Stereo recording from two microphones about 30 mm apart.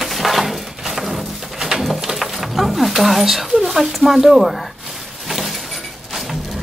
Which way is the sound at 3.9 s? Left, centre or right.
Centre.